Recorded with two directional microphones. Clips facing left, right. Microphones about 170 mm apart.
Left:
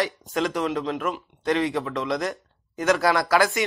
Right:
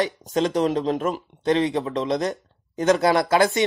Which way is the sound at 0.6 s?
40° right (ahead or behind).